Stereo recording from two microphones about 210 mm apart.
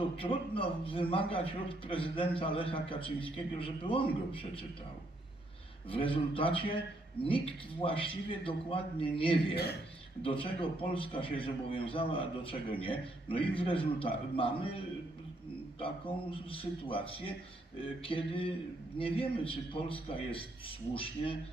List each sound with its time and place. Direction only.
0.2 s a man's voice: 25° left (ahead or behind)
5.9 s a man's voice: 25° left (ahead or behind)
15.8 s a man's voice: 25° left (ahead or behind)